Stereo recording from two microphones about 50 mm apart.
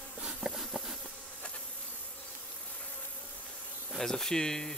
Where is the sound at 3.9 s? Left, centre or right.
Centre.